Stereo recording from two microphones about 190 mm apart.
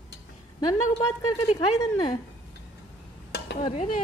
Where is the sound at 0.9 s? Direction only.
30° left (ahead or behind).